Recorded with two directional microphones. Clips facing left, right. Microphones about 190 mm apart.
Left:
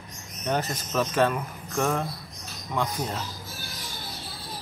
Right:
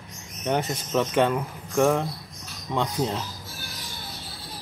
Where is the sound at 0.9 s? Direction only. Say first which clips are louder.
Right 2 dB; 20° right (ahead or behind).